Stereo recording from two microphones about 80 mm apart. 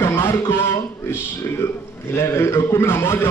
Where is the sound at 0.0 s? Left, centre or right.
Left.